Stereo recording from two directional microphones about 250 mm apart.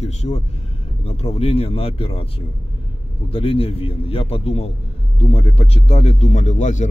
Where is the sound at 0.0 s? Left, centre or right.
Left.